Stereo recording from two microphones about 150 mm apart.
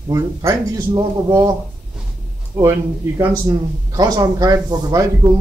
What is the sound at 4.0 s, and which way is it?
Speech, 25° right (ahead or behind).